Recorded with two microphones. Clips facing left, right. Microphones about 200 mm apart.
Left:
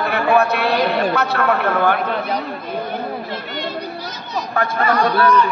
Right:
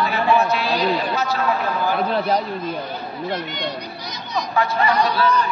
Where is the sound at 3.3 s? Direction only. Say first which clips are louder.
Right 1 dB; 20° right (ahead or behind).